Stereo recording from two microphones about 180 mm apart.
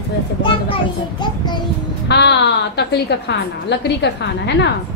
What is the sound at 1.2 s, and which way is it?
Child singing, 25° left (ahead or behind).